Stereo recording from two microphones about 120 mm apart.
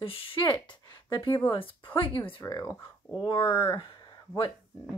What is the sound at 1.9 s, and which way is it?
Speech, 45° left (ahead or behind).